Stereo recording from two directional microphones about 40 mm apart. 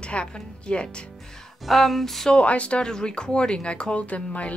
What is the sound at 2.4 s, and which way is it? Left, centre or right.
Speech, left.